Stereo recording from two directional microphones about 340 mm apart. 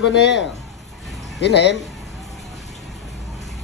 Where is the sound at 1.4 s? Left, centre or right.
Left.